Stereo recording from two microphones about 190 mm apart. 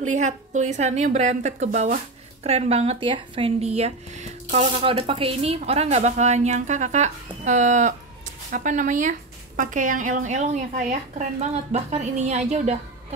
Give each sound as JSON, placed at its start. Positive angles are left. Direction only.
{"t": 0.1, "sound": "speech", "side_deg": -40}